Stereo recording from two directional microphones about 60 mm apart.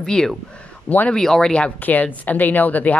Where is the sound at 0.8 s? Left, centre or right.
Left.